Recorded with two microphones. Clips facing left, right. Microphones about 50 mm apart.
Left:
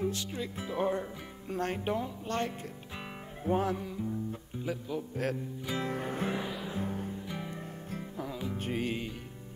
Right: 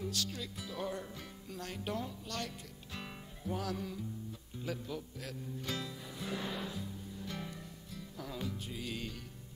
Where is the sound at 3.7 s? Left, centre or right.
Centre.